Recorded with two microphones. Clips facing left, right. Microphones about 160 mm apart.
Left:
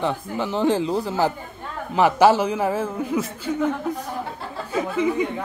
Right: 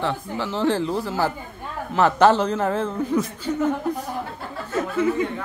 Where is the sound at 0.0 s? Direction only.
15° left (ahead or behind).